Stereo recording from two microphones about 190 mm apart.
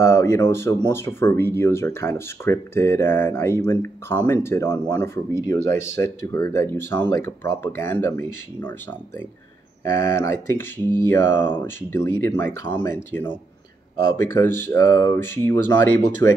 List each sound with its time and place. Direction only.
0.0 s speech: 15° left (ahead or behind)
9.8 s speech: 15° left (ahead or behind)